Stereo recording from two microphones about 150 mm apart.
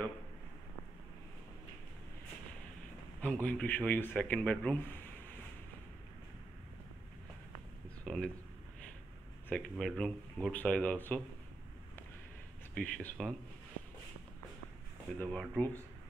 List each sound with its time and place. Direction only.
3.2 s a man's voice: 10° left (ahead or behind)
8.0 s a sound: 5° left (ahead or behind)
9.5 s a man's voice: 5° left (ahead or behind)
12.7 s a man's voice: 10° left (ahead or behind)
15.1 s a man's voice: 5° left (ahead or behind)